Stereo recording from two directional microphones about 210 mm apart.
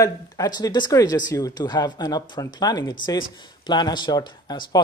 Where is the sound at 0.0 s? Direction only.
15° left (ahead or behind).